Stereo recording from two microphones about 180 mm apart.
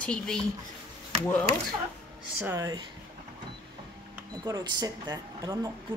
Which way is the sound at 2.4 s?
15° right (ahead or behind).